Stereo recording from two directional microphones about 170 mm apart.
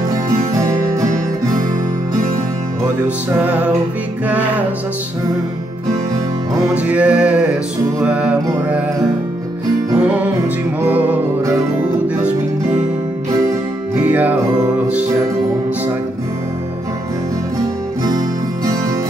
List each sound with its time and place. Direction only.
0.1 s music: 20° right (ahead or behind)
3.3 s music: 10° right (ahead or behind)
6.7 s music: 10° right (ahead or behind)
9.9 s music: 10° right (ahead or behind)
13.9 s music: 10° right (ahead or behind)